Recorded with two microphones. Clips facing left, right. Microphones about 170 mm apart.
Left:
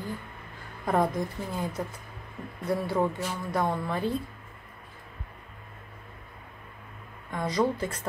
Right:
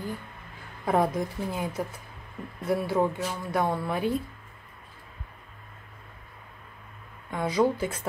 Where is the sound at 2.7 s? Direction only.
5° right (ahead or behind).